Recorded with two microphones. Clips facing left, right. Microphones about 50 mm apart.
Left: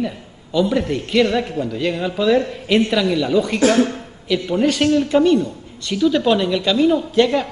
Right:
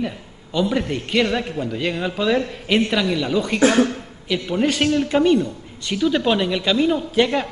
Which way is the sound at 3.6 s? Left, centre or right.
Right.